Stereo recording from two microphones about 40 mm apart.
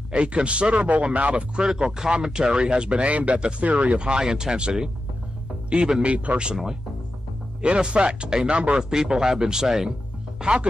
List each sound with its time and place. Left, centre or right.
0.1 s speech: right
1.6 s speech: centre; by 4.1 s right
4.1 s speech: centre
6.0 s speech: right
6.5 s speech: centre
7.6 s speech: right
8.9 s speech: centre
10.4 s speech: right